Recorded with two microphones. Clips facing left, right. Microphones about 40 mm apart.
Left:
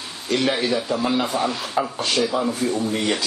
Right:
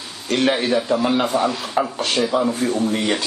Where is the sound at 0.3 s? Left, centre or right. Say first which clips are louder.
Right 2 dB; right.